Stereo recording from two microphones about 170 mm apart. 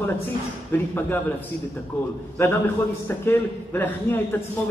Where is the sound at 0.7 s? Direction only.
10° left (ahead or behind).